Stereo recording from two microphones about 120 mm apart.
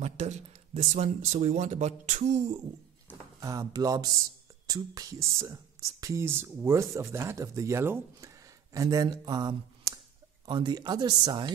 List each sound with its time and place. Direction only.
0.0 s speech: 70° right (ahead or behind)
3.3 s speech: 30° right (ahead or behind)